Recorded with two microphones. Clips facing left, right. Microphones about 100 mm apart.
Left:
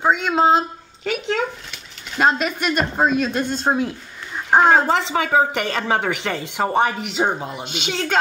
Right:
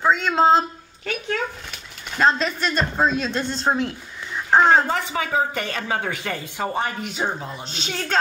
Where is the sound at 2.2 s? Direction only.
10° left (ahead or behind).